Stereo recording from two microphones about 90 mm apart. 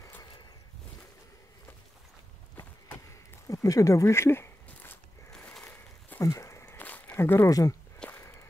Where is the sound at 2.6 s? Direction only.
40° left (ahead or behind).